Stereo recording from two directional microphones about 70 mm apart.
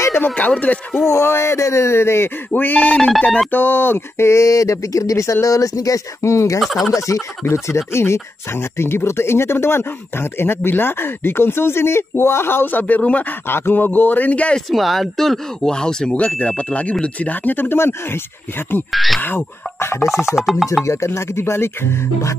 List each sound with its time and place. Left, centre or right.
0.3 s speech: centre
1.1 s speech: left
2.5 s speech: left
6.6 s chopping: centre
6.9 s speech: left; by 14.6 s centre
14.7 s speech: centre; by 18.9 s left
18.9 s chopping: centre
19.2 s speech: left
20.0 s chopping: centre
20.8 s speech: left